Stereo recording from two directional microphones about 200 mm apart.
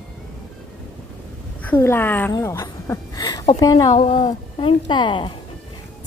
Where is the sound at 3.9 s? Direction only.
35° left (ahead or behind).